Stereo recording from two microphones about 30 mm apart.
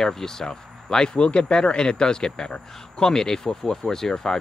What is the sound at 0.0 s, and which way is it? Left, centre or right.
Speech, centre.